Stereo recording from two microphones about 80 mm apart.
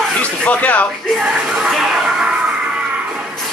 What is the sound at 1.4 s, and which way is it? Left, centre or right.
Music, centre.